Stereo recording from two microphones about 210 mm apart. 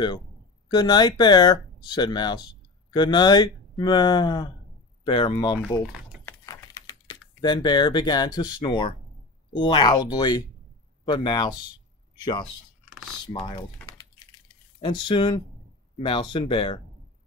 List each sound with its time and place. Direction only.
0.7 s speech: 20° left (ahead or behind)
5.7 s typing: 5° left (ahead or behind)
7.1 s a man's voice: 20° left (ahead or behind)
14.8 s speech: 20° left (ahead or behind)